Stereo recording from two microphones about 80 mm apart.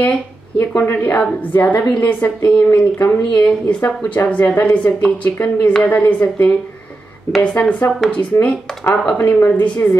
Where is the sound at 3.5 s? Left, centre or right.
Centre.